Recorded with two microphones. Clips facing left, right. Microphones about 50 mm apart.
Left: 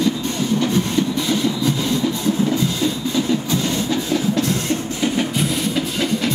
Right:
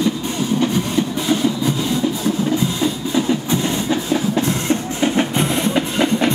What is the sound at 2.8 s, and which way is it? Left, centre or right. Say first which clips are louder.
Music: right 1 dB; centre.